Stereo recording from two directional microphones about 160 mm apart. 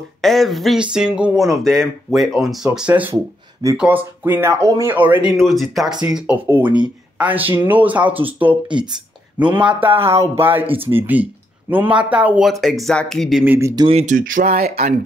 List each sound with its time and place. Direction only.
0.2 s speech: centre (ahead or behind)
5.4 s speech: centre (ahead or behind)
10.0 s speech: 15° right (ahead or behind)
10.6 s speech: 35° right (ahead or behind)
10.9 s speech: 10° right (ahead or behind)
13.4 s speech: 15° right (ahead or behind)
13.8 s speech: 40° right (ahead or behind)
14.1 s speech: 55° right (ahead or behind)